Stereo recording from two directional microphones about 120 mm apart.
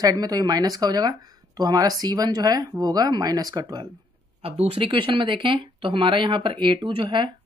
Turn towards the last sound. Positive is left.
turn(degrees=-45)  # may be behind; listen again after turning